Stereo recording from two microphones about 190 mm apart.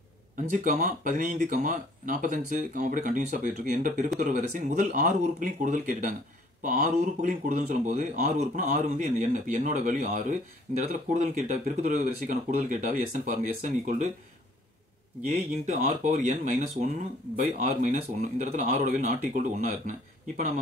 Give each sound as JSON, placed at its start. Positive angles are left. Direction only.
{"t": 0.5, "sound": "a man's voice", "side_deg": -40}
{"t": 15.2, "sound": "a man's voice", "side_deg": -45}